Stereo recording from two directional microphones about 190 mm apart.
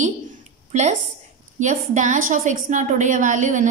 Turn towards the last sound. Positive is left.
turn(degrees=-40)  # may be behind; listen again after turning